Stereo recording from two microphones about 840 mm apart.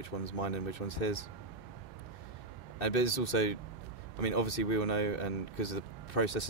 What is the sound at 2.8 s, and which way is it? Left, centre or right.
Speech, left.